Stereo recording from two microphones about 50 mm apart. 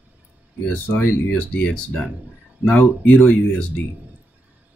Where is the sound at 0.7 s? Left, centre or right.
Left.